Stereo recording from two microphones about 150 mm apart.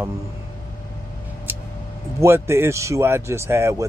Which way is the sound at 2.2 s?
15° right (ahead or behind).